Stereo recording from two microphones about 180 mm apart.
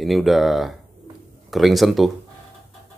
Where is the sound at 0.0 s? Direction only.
Centre (ahead or behind).